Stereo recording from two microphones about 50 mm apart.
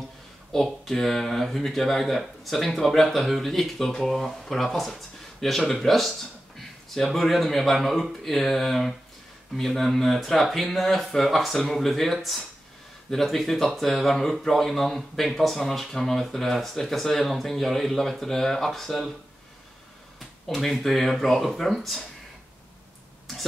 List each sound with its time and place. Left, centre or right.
0.5 s speech: centre
20.2 s speech: centre